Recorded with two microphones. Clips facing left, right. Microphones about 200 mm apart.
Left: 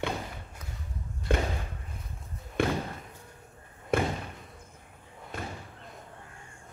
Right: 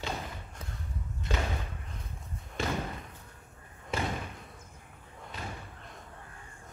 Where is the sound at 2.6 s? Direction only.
55° left (ahead or behind).